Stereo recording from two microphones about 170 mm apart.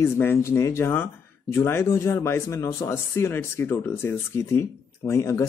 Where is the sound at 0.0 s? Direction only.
15° left (ahead or behind).